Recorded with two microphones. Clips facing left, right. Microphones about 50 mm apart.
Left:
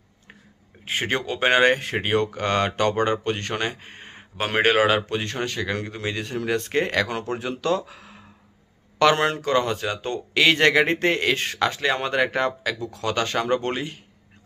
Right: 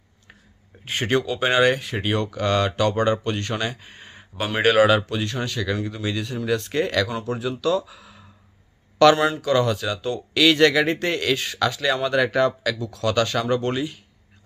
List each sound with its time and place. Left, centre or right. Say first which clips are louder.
0.8 s speech: right 3 dB; centre
1.2 s a man's voice: left 2 dB; left
9.5 s a man's voice: right 2 dB; left